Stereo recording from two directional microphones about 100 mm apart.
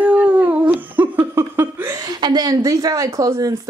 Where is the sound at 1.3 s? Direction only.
25° right (ahead or behind).